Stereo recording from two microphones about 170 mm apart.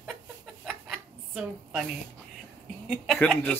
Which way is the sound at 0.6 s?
5° right (ahead or behind).